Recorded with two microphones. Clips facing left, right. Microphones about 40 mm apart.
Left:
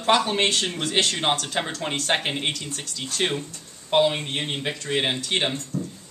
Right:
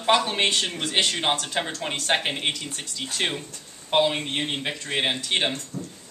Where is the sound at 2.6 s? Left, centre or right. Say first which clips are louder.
Even; centre.